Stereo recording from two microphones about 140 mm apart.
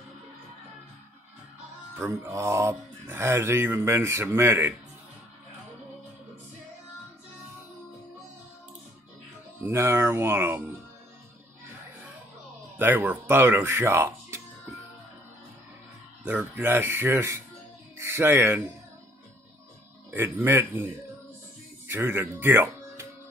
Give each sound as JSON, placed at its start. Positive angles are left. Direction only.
{"t": 2.0, "sound": "speech", "side_deg": -10}
{"t": 9.6, "sound": "speech", "side_deg": -20}
{"t": 12.7, "sound": "speech", "side_deg": -15}
{"t": 16.3, "sound": "speech", "side_deg": -15}
{"t": 20.1, "sound": "speech", "side_deg": -15}
{"t": 21.8, "sound": "speech", "side_deg": -15}